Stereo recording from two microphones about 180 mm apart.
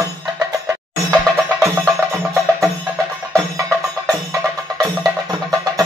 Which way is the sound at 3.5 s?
15° right (ahead or behind).